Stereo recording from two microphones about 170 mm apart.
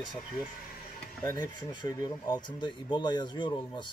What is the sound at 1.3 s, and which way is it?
Speech, 25° left (ahead or behind).